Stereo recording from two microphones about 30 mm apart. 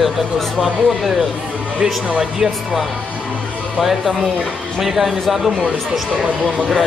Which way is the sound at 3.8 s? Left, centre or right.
Centre.